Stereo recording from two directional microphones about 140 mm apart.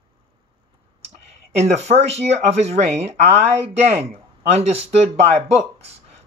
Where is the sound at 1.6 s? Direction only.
50° right (ahead or behind).